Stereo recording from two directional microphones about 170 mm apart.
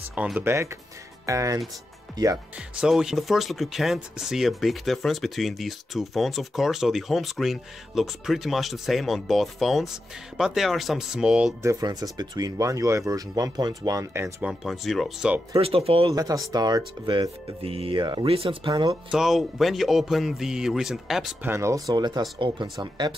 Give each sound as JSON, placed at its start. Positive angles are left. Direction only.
{"t": 0.1, "sound": "speech", "side_deg": -10}
{"t": 2.8, "sound": "speech", "side_deg": -5}
{"t": 11.6, "sound": "speech", "side_deg": -20}
{"t": 14.5, "sound": "speech", "side_deg": 0}
{"t": 15.5, "sound": "speech", "side_deg": -35}
{"t": 16.5, "sound": "speech", "side_deg": -25}
{"t": 18.7, "sound": "speech", "side_deg": -20}
{"t": 19.0, "sound": "speech", "side_deg": 0}